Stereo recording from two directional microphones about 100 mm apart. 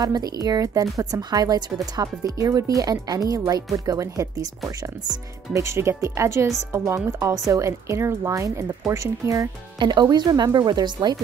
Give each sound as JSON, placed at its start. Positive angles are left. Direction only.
{"t": 0.0, "sound": "speech", "side_deg": -40}
{"t": 5.5, "sound": "speech", "side_deg": -30}
{"t": 9.8, "sound": "speech", "side_deg": -45}